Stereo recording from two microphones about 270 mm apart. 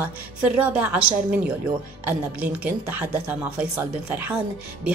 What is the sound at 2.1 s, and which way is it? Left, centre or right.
Speech, centre.